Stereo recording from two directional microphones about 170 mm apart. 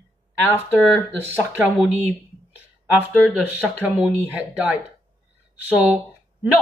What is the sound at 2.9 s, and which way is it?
Speech, 5° right (ahead or behind).